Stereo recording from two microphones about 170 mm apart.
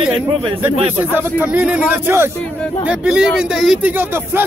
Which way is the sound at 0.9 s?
10° right (ahead or behind).